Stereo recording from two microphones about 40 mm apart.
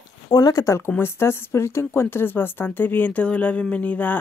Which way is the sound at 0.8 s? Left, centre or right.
Left.